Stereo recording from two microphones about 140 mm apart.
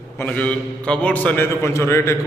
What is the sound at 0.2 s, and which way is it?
A man's voice, 10° left (ahead or behind).